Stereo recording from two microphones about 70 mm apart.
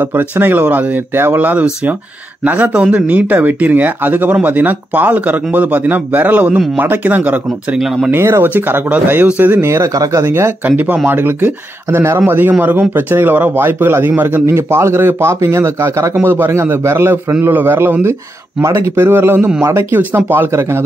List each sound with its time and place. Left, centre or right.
0.0 s speech: right
7.8 s speech: centre
8.1 s speech: right
9.7 s speech: right
10.2 s a man's voice: right
11.1 s a man's voice: right
16.2 s a man's voice: right